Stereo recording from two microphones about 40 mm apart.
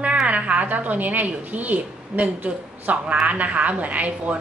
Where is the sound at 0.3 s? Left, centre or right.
Right.